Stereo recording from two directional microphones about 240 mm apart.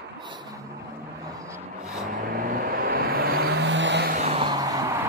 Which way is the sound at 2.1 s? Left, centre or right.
Right.